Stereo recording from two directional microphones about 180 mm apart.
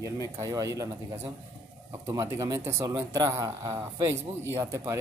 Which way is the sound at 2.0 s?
15° right (ahead or behind).